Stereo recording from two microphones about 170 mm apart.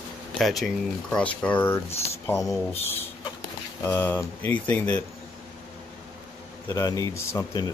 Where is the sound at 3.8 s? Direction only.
10° left (ahead or behind).